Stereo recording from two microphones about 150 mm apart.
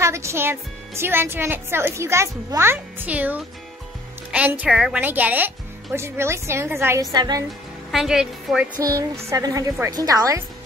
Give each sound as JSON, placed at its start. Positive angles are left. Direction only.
{"t": 0.0, "sound": "a woman's voice", "side_deg": -20}
{"t": 7.9, "sound": "a woman's voice", "side_deg": -5}
{"t": 8.8, "sound": "a woman's voice", "side_deg": -20}